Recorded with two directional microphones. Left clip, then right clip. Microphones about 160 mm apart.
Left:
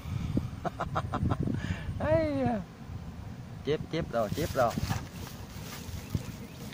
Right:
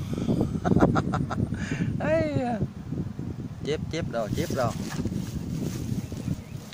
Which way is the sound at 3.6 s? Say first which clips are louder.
Right 1 dB; 15° right (ahead or behind).